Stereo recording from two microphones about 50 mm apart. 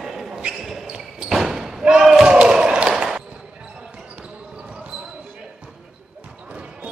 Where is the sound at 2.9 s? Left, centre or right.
Centre.